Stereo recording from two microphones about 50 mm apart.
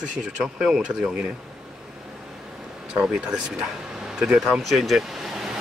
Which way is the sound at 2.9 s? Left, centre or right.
Centre.